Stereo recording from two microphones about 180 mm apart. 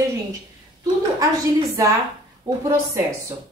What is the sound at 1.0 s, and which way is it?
A woman's voice, 20° right (ahead or behind).